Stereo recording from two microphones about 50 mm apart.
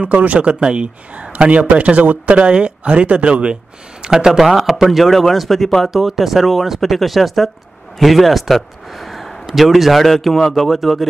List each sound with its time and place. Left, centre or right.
0.0 s a man's voice: right
4.0 s a man's voice: centre